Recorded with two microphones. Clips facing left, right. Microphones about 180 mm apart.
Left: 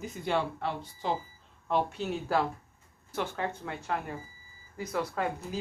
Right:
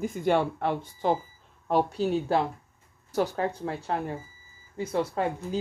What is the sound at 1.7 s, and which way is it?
Speech, 40° right (ahead or behind).